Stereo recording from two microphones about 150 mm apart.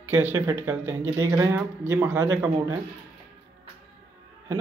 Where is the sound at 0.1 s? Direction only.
15° right (ahead or behind).